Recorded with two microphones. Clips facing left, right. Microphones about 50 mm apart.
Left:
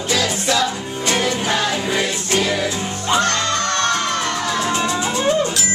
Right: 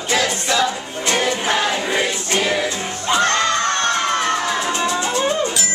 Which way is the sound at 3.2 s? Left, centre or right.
Right.